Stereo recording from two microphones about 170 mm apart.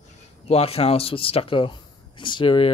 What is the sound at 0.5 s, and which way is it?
Speech, 35° left (ahead or behind).